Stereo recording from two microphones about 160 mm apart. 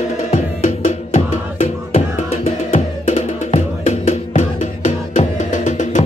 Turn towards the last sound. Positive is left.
turn(degrees=50)  # may be behind; listen again after turning